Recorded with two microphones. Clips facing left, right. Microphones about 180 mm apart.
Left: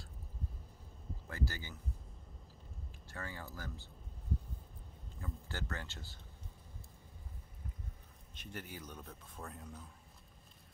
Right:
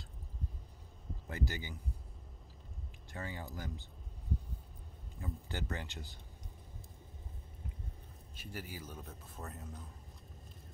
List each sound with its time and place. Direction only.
1.2 s speech: 20° right (ahead or behind)
3.1 s speech: 20° right (ahead or behind)
5.2 s speech: 15° right (ahead or behind)
8.4 s speech: 5° right (ahead or behind)